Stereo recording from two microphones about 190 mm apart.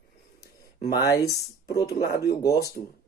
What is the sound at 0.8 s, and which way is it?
Speech, 20° left (ahead or behind).